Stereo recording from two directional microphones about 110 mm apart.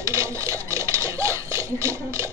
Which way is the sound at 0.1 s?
25° right (ahead or behind).